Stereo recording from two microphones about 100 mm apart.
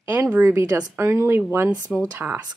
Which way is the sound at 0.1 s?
20° right (ahead or behind).